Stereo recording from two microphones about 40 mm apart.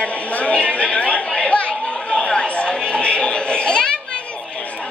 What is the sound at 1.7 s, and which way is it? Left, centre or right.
Chatter, centre.